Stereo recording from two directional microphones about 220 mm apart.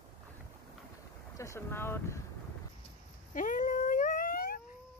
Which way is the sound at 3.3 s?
35° left (ahead or behind).